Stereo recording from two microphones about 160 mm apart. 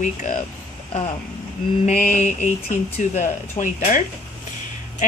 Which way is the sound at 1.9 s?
50° left (ahead or behind).